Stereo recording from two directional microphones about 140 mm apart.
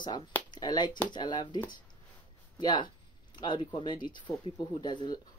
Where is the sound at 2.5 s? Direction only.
35° left (ahead or behind).